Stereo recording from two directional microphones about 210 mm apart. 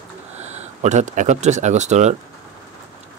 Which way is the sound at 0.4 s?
35° right (ahead or behind).